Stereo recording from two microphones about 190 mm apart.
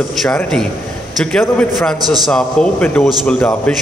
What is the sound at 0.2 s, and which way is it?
A man's voice, 5° left (ahead or behind).